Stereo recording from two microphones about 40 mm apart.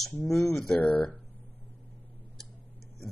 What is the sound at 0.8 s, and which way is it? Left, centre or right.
Speech, left.